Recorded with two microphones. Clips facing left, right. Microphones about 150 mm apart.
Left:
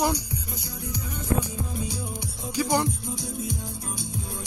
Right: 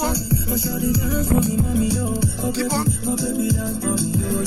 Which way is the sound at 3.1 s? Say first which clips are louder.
Right 11 dB; 90° right.